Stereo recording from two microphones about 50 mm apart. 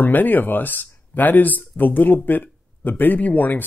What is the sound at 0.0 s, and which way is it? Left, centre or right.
Speech, left.